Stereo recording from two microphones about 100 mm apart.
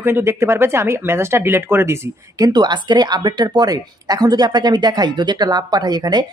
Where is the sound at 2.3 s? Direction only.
40° right (ahead or behind).